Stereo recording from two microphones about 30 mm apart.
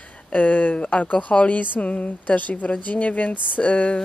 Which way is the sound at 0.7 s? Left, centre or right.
Left.